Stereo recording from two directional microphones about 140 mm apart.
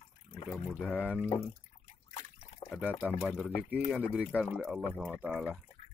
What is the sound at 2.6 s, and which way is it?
Speech, 10° right (ahead or behind).